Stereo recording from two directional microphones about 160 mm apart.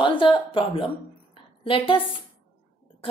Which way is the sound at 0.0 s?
30° left (ahead or behind).